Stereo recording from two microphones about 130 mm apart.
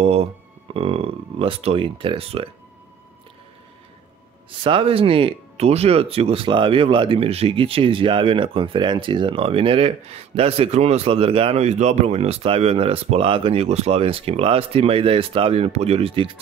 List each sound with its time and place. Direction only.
0.0 s speech: 50° right (ahead or behind)
4.5 s speech: 40° right (ahead or behind)